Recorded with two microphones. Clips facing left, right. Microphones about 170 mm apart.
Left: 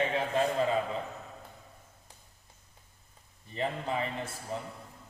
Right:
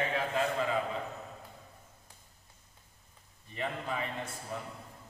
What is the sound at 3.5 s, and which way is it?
Speech, 30° left (ahead or behind).